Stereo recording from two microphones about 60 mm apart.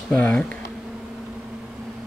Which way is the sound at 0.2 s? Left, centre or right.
Centre.